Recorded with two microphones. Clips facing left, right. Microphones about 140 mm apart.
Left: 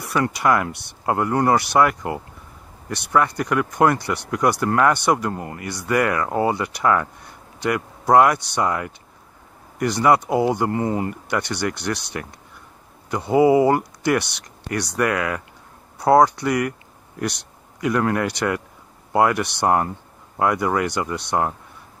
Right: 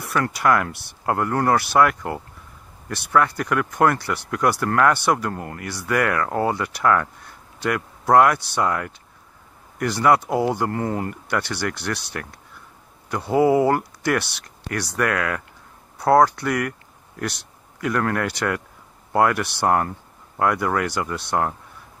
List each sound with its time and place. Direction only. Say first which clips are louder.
0.1 s speech: left 1 dB; 5° left (ahead or behind)
3.3 s speech: left 1 dB; centre (ahead or behind)
16.2 s speech: left 1 dB; 15° left (ahead or behind)
16.4 s a man's voice: left 2 dB; centre (ahead or behind)